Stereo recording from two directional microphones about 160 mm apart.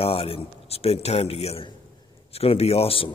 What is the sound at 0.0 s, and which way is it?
A man's voice, 35° left (ahead or behind).